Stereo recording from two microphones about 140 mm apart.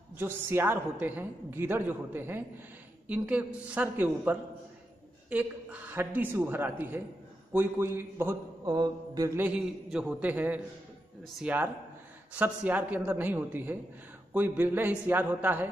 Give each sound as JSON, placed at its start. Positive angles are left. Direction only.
{"t": 0.2, "sound": "a woman's voice", "side_deg": -15}
{"t": 8.6, "sound": "mantra", "side_deg": -30}
{"t": 9.4, "sound": "a woman's voice", "side_deg": -5}